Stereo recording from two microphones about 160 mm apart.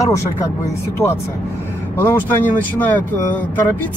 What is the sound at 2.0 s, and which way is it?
Speech, 15° left (ahead or behind).